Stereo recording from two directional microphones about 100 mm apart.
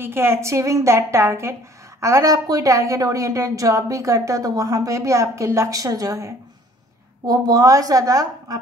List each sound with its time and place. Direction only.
0.0 s a woman's voice: 25° right (ahead or behind)